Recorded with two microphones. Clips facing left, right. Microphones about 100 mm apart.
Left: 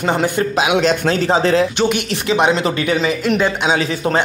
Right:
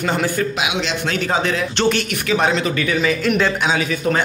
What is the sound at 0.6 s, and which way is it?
Speech, 45° left (ahead or behind).